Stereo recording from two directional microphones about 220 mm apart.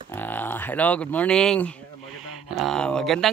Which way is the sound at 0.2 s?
10° left (ahead or behind).